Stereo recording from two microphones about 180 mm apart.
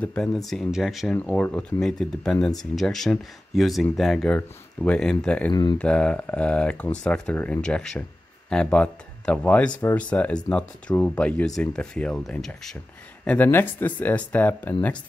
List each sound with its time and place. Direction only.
0.0 s speech: 5° left (ahead or behind)
5.5 s speech: 25° left (ahead or behind)
5.8 s speech: 5° left (ahead or behind)